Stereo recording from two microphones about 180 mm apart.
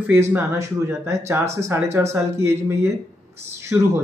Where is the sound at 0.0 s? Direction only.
10° right (ahead or behind).